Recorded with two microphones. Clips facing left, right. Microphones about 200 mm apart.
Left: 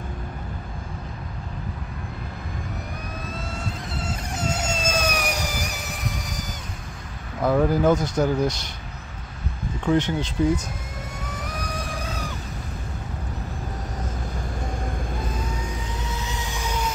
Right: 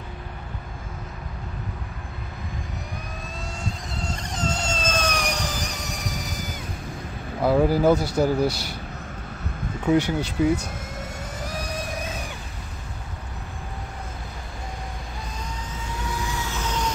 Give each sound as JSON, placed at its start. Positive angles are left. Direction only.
{"t": 4.0, "sound": "vehicle", "side_deg": 5}
{"t": 7.4, "sound": "speech", "side_deg": -5}
{"t": 9.8, "sound": "speech", "side_deg": -10}
{"t": 11.2, "sound": "vehicle", "side_deg": -25}
{"t": 16.0, "sound": "a sound", "side_deg": 20}